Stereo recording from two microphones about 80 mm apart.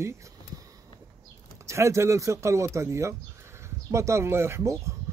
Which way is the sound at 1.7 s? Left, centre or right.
Right.